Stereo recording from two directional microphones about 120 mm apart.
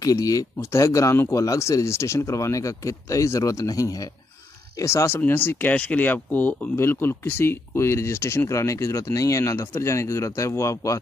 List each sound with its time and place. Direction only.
0.0 s speech: 30° left (ahead or behind)